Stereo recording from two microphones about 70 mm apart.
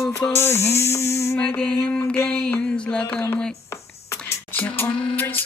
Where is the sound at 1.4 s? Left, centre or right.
Centre.